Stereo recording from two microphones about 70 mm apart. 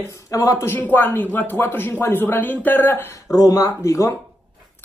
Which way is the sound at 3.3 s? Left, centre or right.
Left.